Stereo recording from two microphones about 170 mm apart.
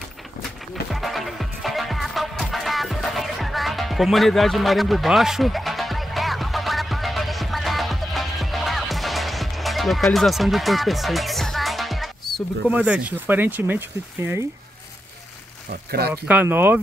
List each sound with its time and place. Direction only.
0.9 s music: centre (ahead or behind)
15.7 s speech: 70° right (ahead or behind)
16.3 s speech: 10° right (ahead or behind)